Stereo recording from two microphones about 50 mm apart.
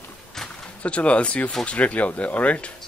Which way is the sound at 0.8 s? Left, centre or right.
Left.